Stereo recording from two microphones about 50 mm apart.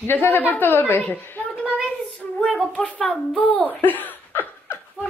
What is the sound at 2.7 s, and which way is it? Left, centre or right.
A woman's voice, left.